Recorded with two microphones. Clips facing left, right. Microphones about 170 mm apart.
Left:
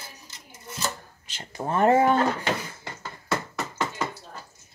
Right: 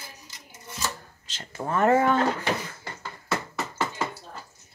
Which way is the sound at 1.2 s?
10° left (ahead or behind).